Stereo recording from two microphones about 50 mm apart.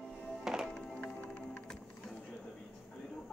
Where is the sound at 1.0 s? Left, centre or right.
Left.